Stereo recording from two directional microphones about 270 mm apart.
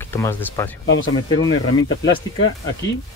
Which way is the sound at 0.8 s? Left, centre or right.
Left.